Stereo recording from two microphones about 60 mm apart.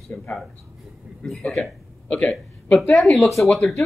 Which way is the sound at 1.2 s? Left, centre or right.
Centre.